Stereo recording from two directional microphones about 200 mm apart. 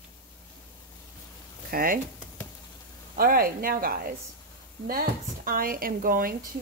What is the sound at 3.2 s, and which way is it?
Speech, 45° right (ahead or behind).